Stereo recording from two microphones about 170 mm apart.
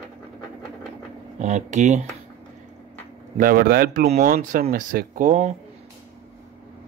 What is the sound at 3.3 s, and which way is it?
Speech, 60° right (ahead or behind).